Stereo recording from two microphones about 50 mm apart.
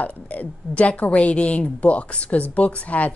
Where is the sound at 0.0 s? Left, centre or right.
Left.